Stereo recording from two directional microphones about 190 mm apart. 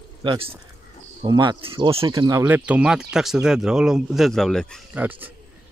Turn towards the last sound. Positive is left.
turn(degrees=-10)  # may be behind; listen again after turning